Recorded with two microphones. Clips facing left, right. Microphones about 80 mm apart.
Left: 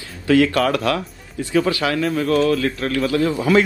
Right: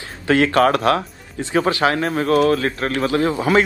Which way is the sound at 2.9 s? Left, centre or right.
Right.